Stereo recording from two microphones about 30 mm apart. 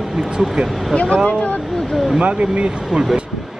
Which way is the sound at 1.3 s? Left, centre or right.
Left.